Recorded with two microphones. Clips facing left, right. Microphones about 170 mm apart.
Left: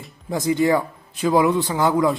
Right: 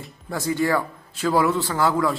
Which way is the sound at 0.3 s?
15° left (ahead or behind).